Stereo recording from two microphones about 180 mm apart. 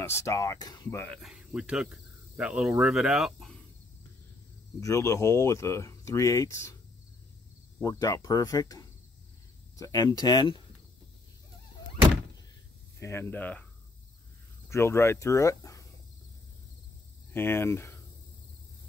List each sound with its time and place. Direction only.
0.0 s speech: 15° left (ahead or behind)
1.0 s speech: centre (ahead or behind)
4.7 s speech: 15° left (ahead or behind)
7.8 s speech: 20° left (ahead or behind)
13.0 s speech: 15° left (ahead or behind)
14.7 s speech: 15° left (ahead or behind)
17.3 s speech: 10° left (ahead or behind)